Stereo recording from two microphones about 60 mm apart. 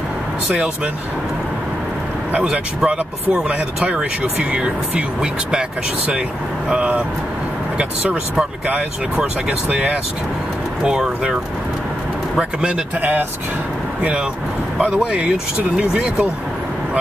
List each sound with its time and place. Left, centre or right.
2.4 s speech: centre
12.4 s speech: centre
15.0 s speech: centre